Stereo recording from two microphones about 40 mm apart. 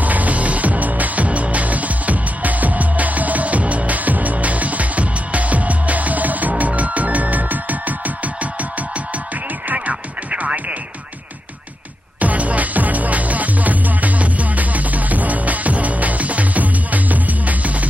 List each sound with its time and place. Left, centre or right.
0.0 s music: right
9.7 s radio: right
12.2 s music: right